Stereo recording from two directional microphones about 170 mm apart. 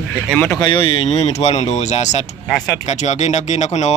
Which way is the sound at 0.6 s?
30° left (ahead or behind).